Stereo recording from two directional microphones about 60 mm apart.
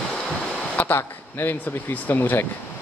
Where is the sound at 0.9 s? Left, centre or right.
Left.